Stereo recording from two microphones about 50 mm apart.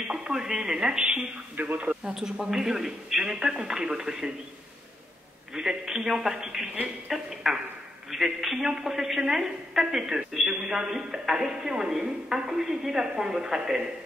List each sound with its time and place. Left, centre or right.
0.1 s a woman's voice: centre
5.5 s a woman's voice: centre